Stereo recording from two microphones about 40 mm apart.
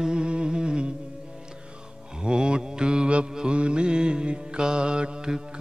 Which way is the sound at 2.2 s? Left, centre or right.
Right.